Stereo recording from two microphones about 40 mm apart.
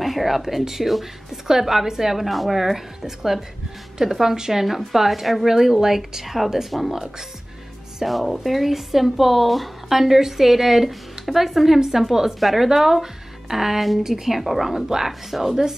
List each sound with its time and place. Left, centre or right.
0.0 s a woman's voice: centre